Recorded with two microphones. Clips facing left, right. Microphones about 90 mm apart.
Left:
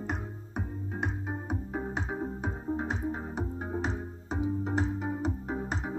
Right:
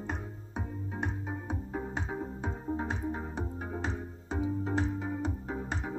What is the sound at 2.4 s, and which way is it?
Music, 20° left (ahead or behind).